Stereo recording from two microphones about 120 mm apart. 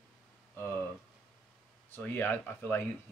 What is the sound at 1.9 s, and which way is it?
Speech, 15° left (ahead or behind).